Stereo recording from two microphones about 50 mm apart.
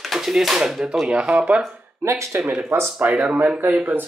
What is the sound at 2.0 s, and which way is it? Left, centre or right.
Speech, right.